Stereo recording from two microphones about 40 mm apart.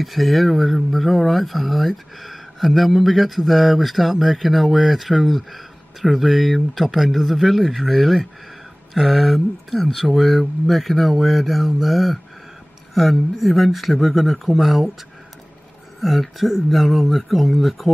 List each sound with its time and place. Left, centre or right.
0.0 s speech: centre
16.0 s speech: centre